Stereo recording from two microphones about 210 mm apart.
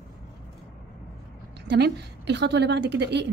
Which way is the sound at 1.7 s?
55° right (ahead or behind).